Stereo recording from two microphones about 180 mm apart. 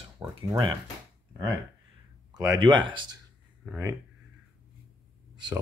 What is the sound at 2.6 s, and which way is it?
Speech, 25° right (ahead or behind).